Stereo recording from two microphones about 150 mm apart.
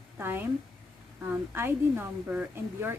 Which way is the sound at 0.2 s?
15° right (ahead or behind).